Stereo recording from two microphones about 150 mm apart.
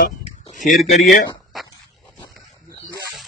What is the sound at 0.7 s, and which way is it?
Speech, 55° left (ahead or behind).